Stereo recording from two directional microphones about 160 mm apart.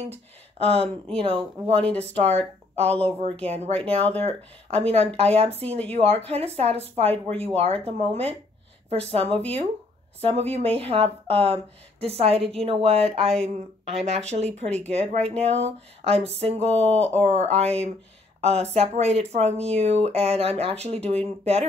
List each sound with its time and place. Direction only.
0.0 s speech: 40° right (ahead or behind)
1.8 s speech: 5° left (ahead or behind)
2.2 s speech: 40° right (ahead or behind)